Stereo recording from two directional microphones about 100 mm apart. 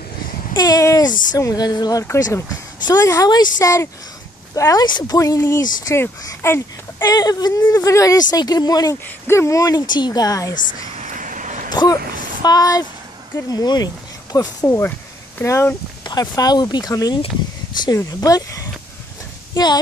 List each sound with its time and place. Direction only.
0.6 s speech: 35° left (ahead or behind)
4.8 s speech: 45° left (ahead or behind); by 6.6 s 25° left (ahead or behind)
7.0 s speech: 40° left (ahead or behind)
9.3 s speech: 30° left (ahead or behind)
15.4 s speech: 30° left (ahead or behind)
16.1 s speech: 40° left (ahead or behind)